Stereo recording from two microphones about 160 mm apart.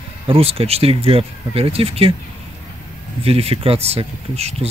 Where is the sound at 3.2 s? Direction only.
40° right (ahead or behind).